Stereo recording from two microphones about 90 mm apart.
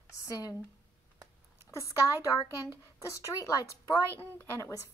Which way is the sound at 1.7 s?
35° left (ahead or behind).